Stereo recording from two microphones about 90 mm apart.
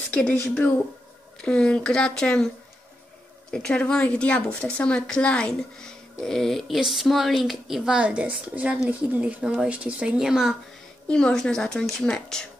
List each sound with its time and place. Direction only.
0.1 s a woman's voice: 15° left (ahead or behind)
3.5 s a woman's voice: 10° left (ahead or behind); by 10.6 s 5° right (ahead or behind)
11.1 s a woman's voice: 10° left (ahead or behind)